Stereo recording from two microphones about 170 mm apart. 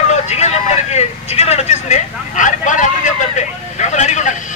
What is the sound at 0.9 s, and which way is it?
Speech, 40° left (ahead or behind).